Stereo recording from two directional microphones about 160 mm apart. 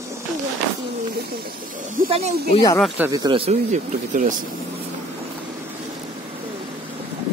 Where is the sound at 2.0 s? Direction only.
35° right (ahead or behind).